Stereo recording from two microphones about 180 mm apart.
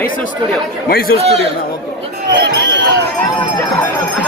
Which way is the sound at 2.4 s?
70° right (ahead or behind).